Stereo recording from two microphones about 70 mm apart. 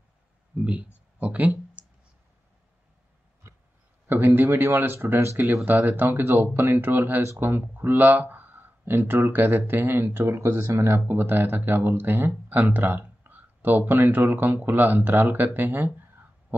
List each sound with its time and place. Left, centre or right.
0.6 s speech: right
1.2 s a sound: right
4.1 s speech: right
5.7 s speech: right